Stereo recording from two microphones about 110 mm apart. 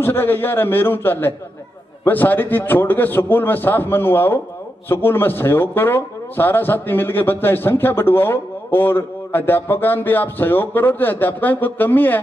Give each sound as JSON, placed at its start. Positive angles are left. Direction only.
{"t": 0.0, "sound": "a man's voice", "side_deg": 20}